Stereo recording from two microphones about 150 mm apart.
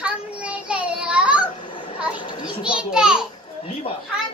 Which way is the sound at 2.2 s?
30° left (ahead or behind).